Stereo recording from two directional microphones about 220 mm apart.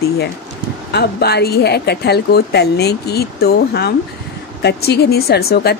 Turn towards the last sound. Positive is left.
turn(degrees=45)  # may be behind; listen again after turning